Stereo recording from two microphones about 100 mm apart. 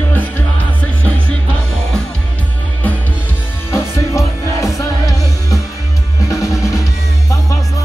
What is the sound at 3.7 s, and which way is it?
Music, 30° left (ahead or behind).